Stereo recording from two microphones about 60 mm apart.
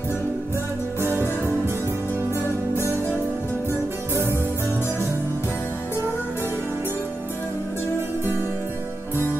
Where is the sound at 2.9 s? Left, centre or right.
Left.